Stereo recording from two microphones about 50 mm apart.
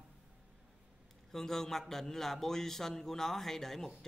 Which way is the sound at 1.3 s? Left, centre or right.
Centre.